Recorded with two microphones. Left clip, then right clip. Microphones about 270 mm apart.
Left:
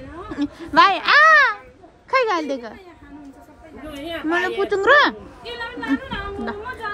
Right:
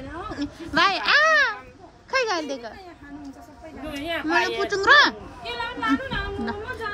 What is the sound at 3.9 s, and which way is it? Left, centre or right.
Speech, centre.